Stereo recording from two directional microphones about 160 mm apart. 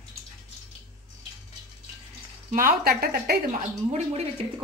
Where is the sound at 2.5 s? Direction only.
65° right (ahead or behind).